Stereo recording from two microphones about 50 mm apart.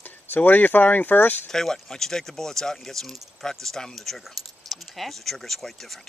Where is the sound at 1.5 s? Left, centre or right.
Centre.